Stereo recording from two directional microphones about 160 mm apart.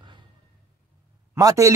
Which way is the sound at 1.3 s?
20° right (ahead or behind).